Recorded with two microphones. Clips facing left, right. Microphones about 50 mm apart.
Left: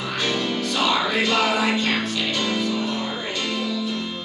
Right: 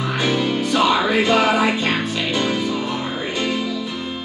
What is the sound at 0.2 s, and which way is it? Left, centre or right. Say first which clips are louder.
Music: right 4 dB; centre.